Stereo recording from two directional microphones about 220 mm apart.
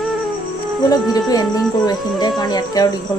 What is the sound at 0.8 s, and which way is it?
Speech, 15° left (ahead or behind).